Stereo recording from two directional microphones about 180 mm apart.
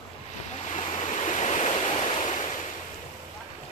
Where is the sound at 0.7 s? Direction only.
40° left (ahead or behind).